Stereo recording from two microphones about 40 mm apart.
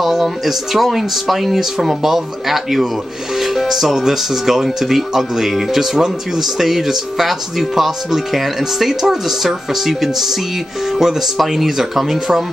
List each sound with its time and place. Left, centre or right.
0.0 s speech: centre